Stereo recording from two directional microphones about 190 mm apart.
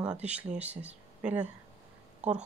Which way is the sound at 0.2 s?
5° right (ahead or behind).